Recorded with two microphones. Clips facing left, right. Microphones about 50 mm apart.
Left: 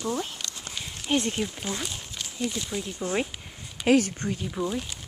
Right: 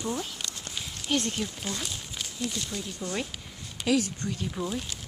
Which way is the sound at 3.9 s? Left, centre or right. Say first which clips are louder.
Left 5 dB; left.